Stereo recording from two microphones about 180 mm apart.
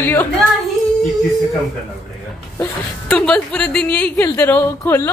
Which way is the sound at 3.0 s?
5° left (ahead or behind).